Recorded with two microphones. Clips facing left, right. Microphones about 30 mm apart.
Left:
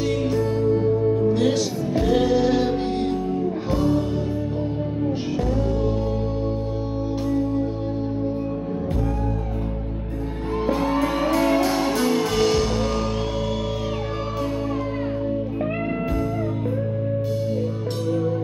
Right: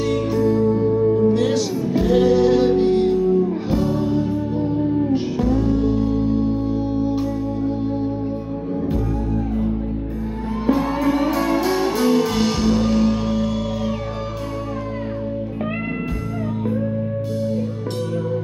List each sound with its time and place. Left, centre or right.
0.5 s music: centre
1.3 s music: centre
10.7 s music: centre
11.6 s music: centre